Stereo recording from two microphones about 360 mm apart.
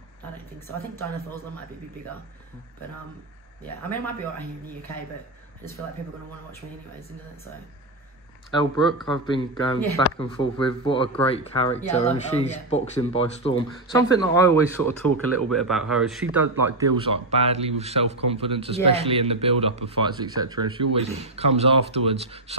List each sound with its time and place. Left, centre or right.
0.7 s speech: centre
3.6 s speech: centre
8.5 s speech: centre
16.8 s speech: centre